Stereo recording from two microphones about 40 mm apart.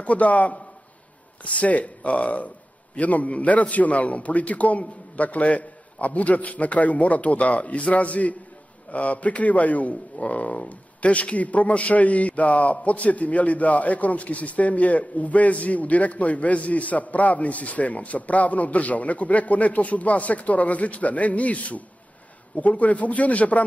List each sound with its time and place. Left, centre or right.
0.0 s a man's voice: left